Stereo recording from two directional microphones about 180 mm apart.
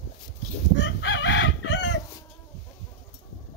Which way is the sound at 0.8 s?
80° left.